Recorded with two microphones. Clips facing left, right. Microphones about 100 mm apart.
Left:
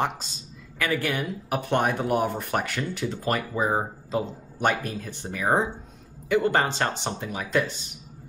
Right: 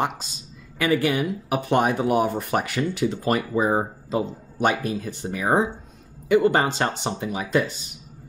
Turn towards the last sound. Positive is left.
turn(degrees=-15)  # may be behind; listen again after turning